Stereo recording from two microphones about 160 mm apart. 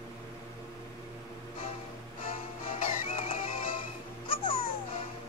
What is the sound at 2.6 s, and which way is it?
Music, 35° left (ahead or behind).